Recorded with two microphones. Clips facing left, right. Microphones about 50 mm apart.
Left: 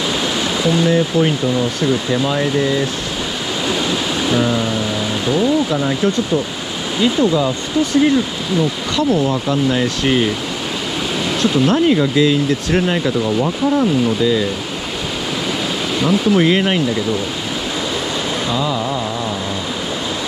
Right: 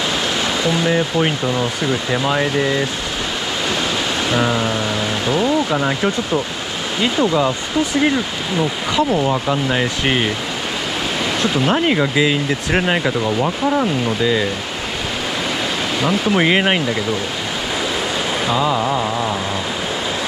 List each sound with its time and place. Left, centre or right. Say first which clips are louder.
0.7 s speech: left 4 dB; centre
4.3 s speech: left 1 dB; centre
5.8 s speech: left 1 dB; centre
11.4 s speech: left 4 dB; centre
11.7 s speech: left 2 dB; right
13.2 s speech: left 1 dB; centre
16.3 s speech: even; right
18.5 s speech: right 4 dB; centre